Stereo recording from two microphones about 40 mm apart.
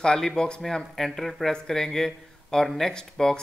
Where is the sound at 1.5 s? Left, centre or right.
Centre.